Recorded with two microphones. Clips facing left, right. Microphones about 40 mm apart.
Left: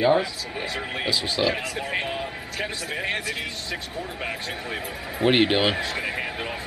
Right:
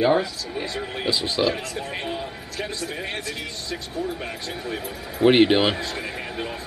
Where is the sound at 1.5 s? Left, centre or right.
Centre.